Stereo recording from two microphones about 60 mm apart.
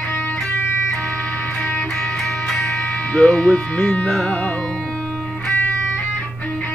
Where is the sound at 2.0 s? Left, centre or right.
Centre.